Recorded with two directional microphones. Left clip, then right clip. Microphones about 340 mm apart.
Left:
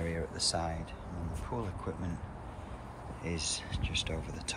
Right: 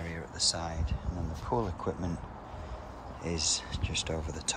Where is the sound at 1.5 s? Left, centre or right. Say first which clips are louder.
Right 8 dB; centre.